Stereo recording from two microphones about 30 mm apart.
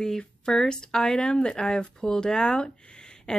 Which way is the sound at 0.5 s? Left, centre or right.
Centre.